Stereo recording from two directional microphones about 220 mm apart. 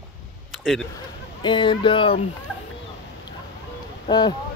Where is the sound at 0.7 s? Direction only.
Centre (ahead or behind).